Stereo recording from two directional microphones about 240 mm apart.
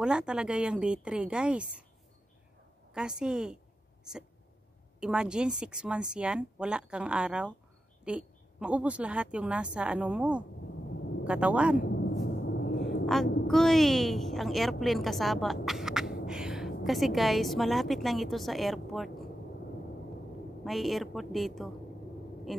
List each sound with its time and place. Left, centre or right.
0.0 s speech: centre
2.9 s speech: centre
5.0 s speech: centre
11.8 s a sound: left
13.0 s a woman's voice: centre
20.6 s speech: centre
22.5 s a sound: centre